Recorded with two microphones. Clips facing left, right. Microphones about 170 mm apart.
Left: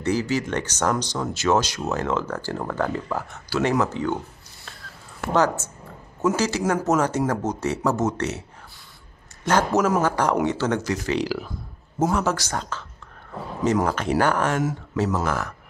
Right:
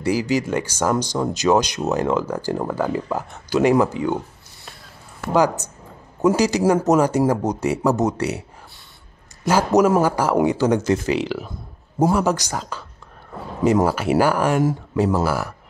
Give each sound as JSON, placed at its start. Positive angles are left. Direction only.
{"t": 0.0, "sound": "speech", "side_deg": -10}
{"t": 5.3, "sound": "speech", "side_deg": -10}
{"t": 10.8, "sound": "speech", "side_deg": -25}
{"t": 11.1, "sound": "speech", "side_deg": 0}
{"t": 13.8, "sound": "speech", "side_deg": -5}